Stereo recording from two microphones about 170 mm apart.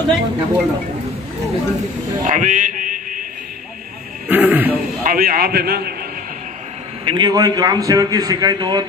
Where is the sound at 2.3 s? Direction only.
45° right (ahead or behind).